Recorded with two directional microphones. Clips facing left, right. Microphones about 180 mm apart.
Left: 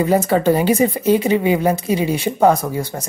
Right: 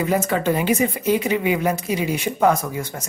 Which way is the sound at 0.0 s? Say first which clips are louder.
Left 5 dB; 35° left (ahead or behind).